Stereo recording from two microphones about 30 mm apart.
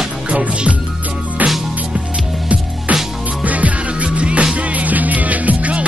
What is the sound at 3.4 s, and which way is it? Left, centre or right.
Music, right.